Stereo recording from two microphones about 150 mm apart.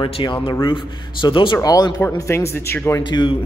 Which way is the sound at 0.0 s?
30° left (ahead or behind).